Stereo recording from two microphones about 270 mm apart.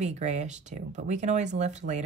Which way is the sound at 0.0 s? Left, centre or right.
Right.